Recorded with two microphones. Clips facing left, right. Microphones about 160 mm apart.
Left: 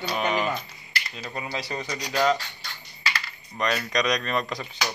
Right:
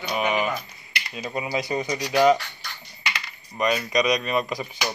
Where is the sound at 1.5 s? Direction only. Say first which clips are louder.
Right 7 dB; 15° right (ahead or behind).